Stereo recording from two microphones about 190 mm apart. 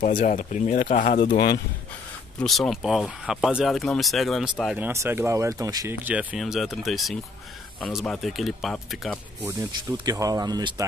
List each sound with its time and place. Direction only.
0.1 s speech: 40° left (ahead or behind)
2.4 s speech: centre (ahead or behind); by 5.9 s 20° right (ahead or behind)
6.0 s speech: 5° right (ahead or behind)
9.4 s speech: 15° right (ahead or behind)